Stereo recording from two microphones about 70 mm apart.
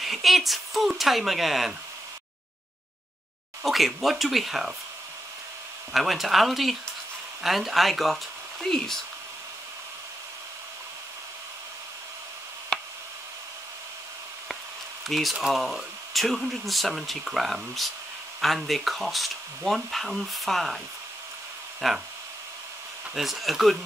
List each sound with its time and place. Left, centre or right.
0.0 s speech: centre
3.6 s speech: centre
5.9 s speech: centre
12.7 s tick: centre
15.0 s speech: centre
21.8 s speech: centre
23.1 s speech: centre